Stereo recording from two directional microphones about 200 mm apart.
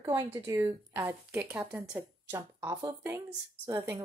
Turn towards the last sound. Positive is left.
turn(degrees=-15)  # may be behind; listen again after turning